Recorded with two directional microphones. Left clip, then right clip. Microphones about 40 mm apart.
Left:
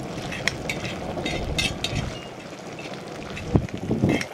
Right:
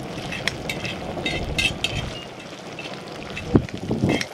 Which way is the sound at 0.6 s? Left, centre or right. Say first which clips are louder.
Right 1 dB; centre.